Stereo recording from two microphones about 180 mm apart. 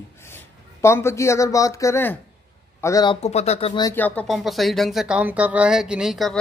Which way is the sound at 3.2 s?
35° left (ahead or behind).